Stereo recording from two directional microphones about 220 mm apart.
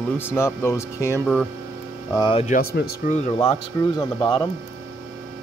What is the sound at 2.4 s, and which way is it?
Speech, 40° left (ahead or behind).